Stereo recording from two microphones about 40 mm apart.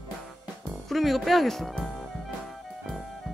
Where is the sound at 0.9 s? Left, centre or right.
Centre.